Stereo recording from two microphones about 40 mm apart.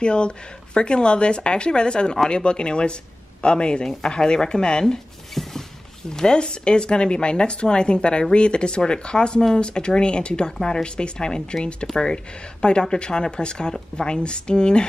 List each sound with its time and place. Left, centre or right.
0.0 s speech: left
5.3 s a sound: centre
6.0 s speech: centre